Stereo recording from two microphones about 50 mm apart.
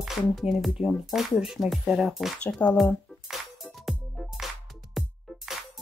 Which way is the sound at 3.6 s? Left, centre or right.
Centre.